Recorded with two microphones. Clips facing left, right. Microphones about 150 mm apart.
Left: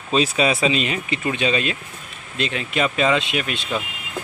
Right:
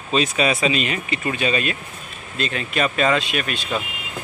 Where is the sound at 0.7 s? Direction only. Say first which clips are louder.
Left 1 dB; 25° left (ahead or behind).